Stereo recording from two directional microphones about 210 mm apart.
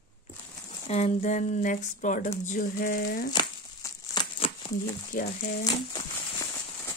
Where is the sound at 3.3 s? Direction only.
20° left (ahead or behind).